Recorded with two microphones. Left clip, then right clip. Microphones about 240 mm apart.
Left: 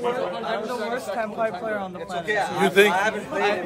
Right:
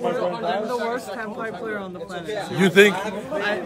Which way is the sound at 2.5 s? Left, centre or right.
Right.